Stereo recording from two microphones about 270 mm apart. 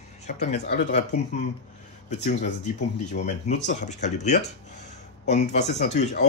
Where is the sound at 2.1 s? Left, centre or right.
Left.